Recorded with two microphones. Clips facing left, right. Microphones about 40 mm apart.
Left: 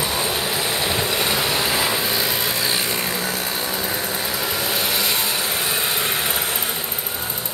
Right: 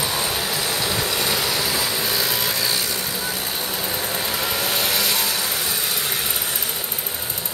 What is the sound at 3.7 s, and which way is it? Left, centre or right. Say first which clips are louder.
Vehicle: left 1 dB; centre.